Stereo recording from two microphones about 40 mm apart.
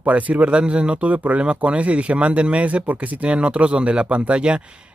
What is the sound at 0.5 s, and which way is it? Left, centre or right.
Speech, right.